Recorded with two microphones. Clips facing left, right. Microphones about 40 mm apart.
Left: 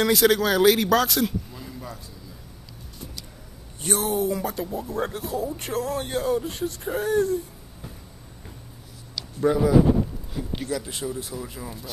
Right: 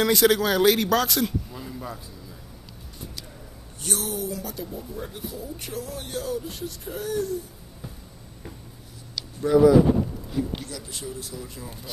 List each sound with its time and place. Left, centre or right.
0.0 s a man's voice: centre
3.8 s speech: left
4.8 s speech: left
5.3 s speech: left
6.0 s speech: left
9.5 s speech: left